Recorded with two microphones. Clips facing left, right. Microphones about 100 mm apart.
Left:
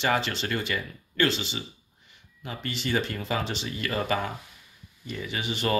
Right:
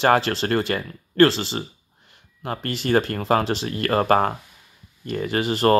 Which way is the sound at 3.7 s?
55° right (ahead or behind).